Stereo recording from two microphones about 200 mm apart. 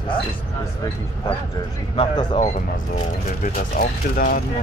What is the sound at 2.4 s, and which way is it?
Speech, 40° left (ahead or behind).